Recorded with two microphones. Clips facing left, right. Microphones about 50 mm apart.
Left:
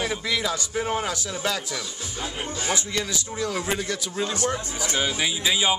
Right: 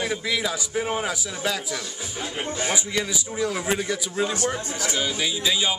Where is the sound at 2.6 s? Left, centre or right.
Centre.